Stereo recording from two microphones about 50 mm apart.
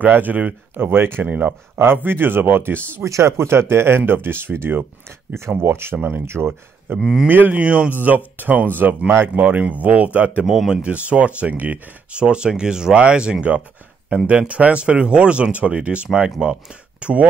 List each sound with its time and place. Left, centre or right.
0.0 s speech: right
1.2 s speech: right
2.0 s speech: right
3.0 s speech: right
5.6 s speech: right
7.0 s speech: centre
7.2 s speech: right
7.6 s speech: right
7.9 s speech: right
10.4 s speech: centre
10.8 s speech: right
14.1 s speech: right
14.5 s speech: right